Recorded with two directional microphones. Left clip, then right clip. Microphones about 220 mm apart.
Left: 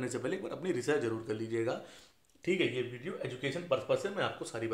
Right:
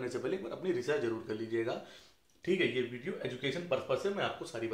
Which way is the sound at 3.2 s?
35° left (ahead or behind).